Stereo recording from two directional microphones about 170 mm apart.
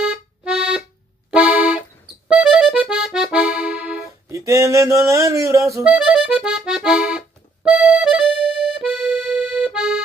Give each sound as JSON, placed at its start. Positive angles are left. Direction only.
{"t": 0.0, "sound": "music", "side_deg": -5}
{"t": 1.3, "sound": "accordion", "side_deg": -10}
{"t": 4.3, "sound": "speech", "side_deg": -20}
{"t": 5.9, "sound": "accordion", "side_deg": -5}